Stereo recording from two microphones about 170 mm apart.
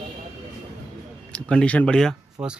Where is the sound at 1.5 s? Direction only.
5° left (ahead or behind).